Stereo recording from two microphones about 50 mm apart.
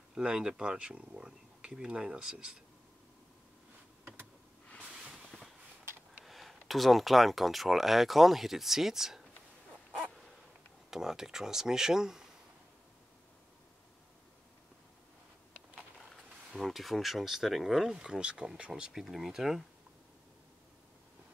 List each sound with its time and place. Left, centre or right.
0.1 s speech: centre
4.8 s a sound: centre
6.2 s speech: centre
10.9 s speech: centre
16.1 s speech: centre